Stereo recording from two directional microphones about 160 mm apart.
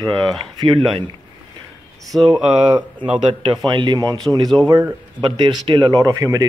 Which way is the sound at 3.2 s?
30° right (ahead or behind).